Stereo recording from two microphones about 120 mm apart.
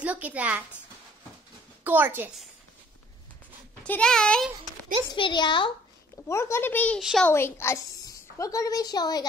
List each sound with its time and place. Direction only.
0.0 s a child's voice: 10° right (ahead or behind)
1.9 s a child's voice: 15° right (ahead or behind)
3.8 s a child's voice: 10° left (ahead or behind)
5.1 s a woman's voice: 40° left (ahead or behind)
6.2 s a woman's voice: 20° left (ahead or behind)
7.0 s a child's voice: 5° right (ahead or behind)
7.2 s a woman's voice: 20° left (ahead or behind)